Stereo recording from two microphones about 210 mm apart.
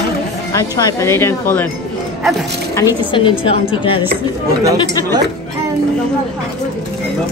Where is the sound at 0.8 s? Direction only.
15° left (ahead or behind).